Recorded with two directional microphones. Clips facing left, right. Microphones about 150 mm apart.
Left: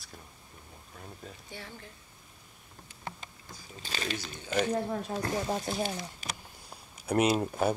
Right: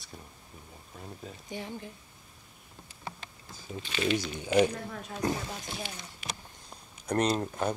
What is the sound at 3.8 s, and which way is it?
Speech, 35° left (ahead or behind).